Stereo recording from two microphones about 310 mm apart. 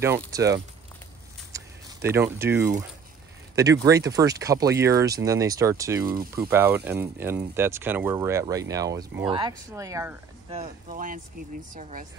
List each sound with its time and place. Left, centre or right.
0.3 s speech: centre
1.5 s a sound: centre
3.5 s speech: centre
10.6 s speech: right